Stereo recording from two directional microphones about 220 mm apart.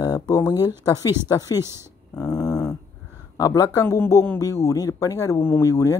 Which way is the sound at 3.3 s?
15° left (ahead or behind).